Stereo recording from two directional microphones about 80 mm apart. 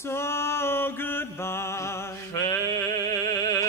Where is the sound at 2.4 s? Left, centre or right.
Left.